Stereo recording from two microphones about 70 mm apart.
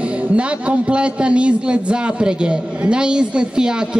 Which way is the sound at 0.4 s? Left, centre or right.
Centre.